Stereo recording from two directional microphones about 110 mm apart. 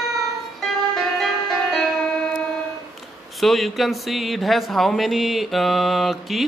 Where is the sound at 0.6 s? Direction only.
Centre (ahead or behind).